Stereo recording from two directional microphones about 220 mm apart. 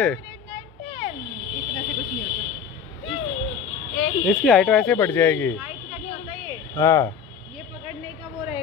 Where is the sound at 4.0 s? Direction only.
Centre (ahead or behind).